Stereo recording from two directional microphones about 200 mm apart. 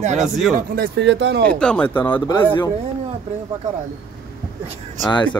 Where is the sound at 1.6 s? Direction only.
5° left (ahead or behind).